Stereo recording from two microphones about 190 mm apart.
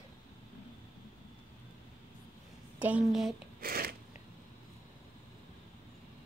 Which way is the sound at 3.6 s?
50° right (ahead or behind).